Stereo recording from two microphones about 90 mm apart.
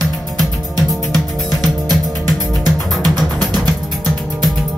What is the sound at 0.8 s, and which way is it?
Music, 45° right (ahead or behind).